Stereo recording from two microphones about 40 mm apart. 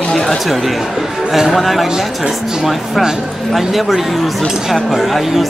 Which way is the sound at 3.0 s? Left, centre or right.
Centre.